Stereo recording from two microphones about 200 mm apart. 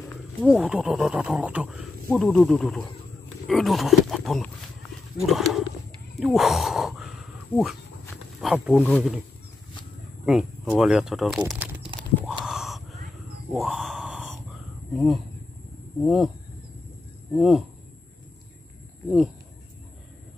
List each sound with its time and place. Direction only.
0.4 s speech: 5° right (ahead or behind)
10.2 s speech: centre (ahead or behind)
11.9 s a sound: 25° right (ahead or behind)
12.4 s gasp: centre (ahead or behind)
13.5 s a sound: centre (ahead or behind)
15.0 s speech: centre (ahead or behind)
17.3 s speech: centre (ahead or behind)
19.0 s speech: centre (ahead or behind)